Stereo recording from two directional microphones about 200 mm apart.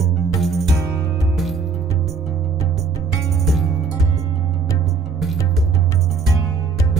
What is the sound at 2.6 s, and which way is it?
Music, 15° left (ahead or behind).